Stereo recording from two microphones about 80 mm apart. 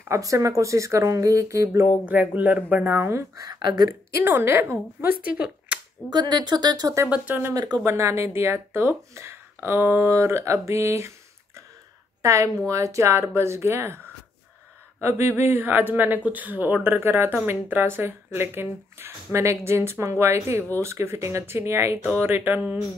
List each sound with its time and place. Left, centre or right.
0.1 s speech: right
2.0 s speech: right
3.1 s speech: right
3.5 s speech: right
4.1 s speech: right
5.2 s speech: centre
6.0 s speech: right
7.1 s speech: right
7.5 s speech: right
7.8 s speech: right
12.2 s speech: right